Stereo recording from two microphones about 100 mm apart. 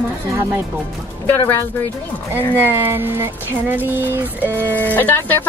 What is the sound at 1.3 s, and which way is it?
Speech, 20° left (ahead or behind).